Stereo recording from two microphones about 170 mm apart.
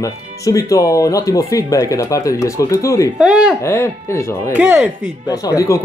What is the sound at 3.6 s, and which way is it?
Speech, 15° left (ahead or behind).